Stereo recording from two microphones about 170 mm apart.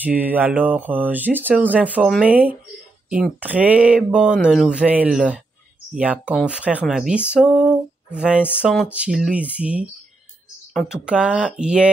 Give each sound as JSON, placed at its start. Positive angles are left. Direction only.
{"t": 0.0, "sound": "speech", "side_deg": -10}